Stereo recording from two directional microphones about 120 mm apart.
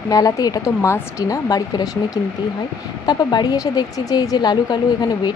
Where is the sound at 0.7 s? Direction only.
20° left (ahead or behind).